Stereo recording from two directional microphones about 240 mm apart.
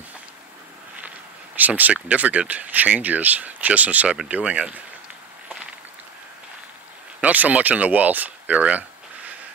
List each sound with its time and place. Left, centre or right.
1.6 s speech: centre
7.2 s speech: centre